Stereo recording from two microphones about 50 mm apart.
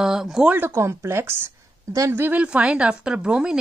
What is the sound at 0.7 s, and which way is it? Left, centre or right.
Speech, right.